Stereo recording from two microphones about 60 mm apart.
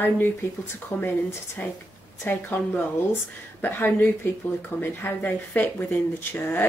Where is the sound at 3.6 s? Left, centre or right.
Left.